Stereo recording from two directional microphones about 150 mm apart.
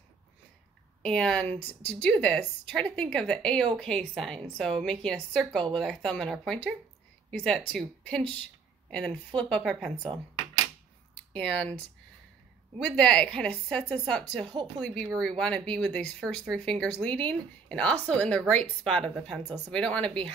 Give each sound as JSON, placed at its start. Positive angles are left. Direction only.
{"t": 1.0, "sound": "a woman's voice", "side_deg": 5}
{"t": 11.3, "sound": "a woman's voice", "side_deg": 5}
{"t": 12.7, "sound": "a woman's voice", "side_deg": 5}
{"t": 14.4, "sound": "speech", "side_deg": -30}
{"t": 14.8, "sound": "a woman's voice", "side_deg": 0}